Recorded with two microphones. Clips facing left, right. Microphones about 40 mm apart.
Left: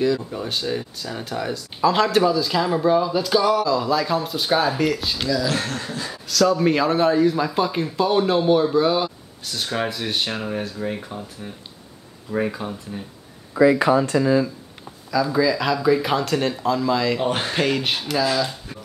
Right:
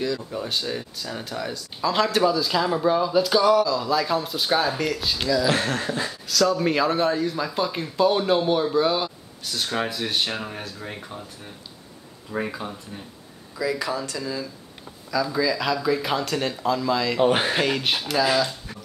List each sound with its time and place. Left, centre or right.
0.0 s speech: centre
5.6 s speech: centre
6.0 s speech: centre
13.6 s speech: left
15.0 s speech: centre
17.2 s speech: centre
17.6 s speech: centre